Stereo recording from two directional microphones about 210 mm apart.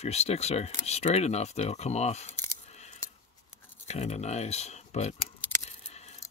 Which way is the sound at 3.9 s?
30° left (ahead or behind).